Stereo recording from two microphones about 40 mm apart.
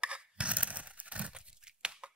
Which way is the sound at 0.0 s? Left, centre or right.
Right.